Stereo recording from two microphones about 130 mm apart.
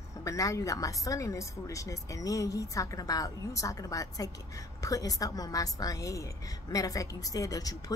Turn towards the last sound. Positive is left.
turn(degrees=25)  # may be behind; listen again after turning